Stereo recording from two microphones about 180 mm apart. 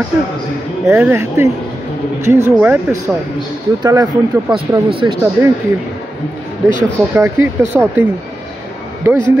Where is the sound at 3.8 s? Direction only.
20° right (ahead or behind).